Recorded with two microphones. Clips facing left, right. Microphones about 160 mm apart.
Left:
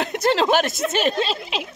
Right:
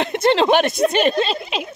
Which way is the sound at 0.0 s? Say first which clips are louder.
Right 3 dB; centre (ahead or behind).